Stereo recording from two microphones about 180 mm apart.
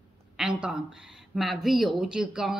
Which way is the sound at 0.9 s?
Centre (ahead or behind).